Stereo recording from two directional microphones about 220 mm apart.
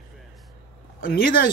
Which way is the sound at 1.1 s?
40° left (ahead or behind).